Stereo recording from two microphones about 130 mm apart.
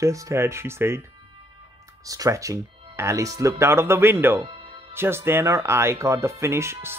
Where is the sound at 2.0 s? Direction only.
25° right (ahead or behind).